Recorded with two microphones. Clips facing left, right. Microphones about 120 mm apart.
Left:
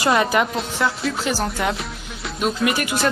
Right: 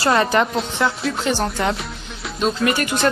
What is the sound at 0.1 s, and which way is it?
Speech, 5° left (ahead or behind).